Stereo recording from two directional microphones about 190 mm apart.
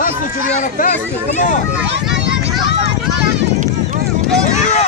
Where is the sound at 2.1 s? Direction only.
65° right (ahead or behind).